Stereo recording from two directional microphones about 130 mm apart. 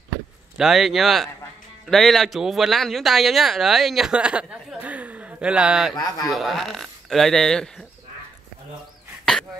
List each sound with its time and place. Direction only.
0.6 s speech: centre (ahead or behind)
5.9 s a man's voice: 25° left (ahead or behind)
6.3 s speech: centre (ahead or behind)
9.2 s throat clearing: 5° left (ahead or behind)